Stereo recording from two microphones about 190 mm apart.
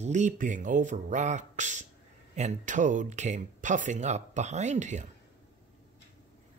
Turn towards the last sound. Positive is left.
turn(degrees=-40)  # may be behind; listen again after turning